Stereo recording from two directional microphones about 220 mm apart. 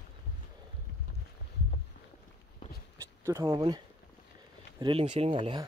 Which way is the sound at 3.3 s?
15° right (ahead or behind).